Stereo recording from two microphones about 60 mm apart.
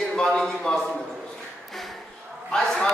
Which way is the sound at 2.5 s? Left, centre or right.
Centre.